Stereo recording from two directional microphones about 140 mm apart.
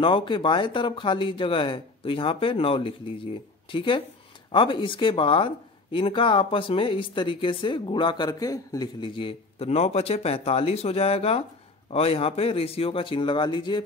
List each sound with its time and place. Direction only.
0.0 s speech: 35° left (ahead or behind)